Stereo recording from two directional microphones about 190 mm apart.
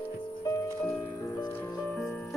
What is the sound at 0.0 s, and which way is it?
Music, 15° left (ahead or behind).